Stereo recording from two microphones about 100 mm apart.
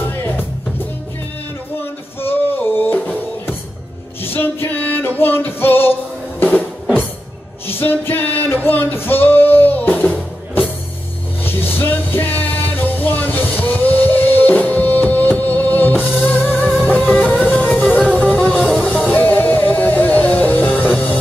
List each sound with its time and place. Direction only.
2.5 s music: 20° left (ahead or behind)
4.2 s music: 20° left (ahead or behind)
18.6 s music: centre (ahead or behind)
19.1 s music: 15° left (ahead or behind)